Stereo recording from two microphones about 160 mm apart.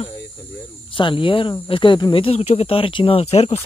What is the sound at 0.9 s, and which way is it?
Speech, 30° left (ahead or behind).